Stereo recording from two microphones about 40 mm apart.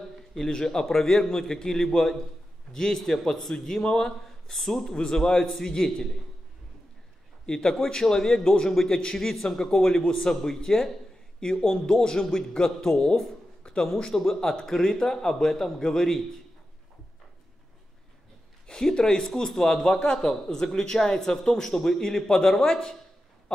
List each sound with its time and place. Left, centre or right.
0.3 s a man's voice: centre
7.4 s a man's voice: centre
18.7 s speech: centre